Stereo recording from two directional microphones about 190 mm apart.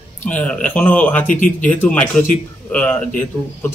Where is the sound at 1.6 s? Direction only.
10° left (ahead or behind).